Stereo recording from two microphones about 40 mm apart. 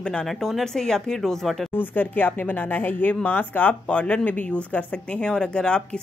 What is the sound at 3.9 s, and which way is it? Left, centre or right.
Speech, left.